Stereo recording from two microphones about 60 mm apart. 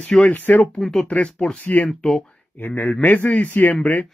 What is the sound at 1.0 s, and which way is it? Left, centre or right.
Speech, left.